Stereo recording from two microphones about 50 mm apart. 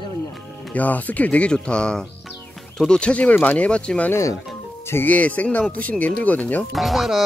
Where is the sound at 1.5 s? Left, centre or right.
Centre.